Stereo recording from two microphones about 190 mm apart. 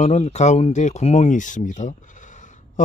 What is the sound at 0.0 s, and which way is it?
Speech, 35° left (ahead or behind).